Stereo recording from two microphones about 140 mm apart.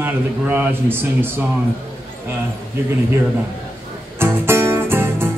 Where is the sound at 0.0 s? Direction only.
15° right (ahead or behind).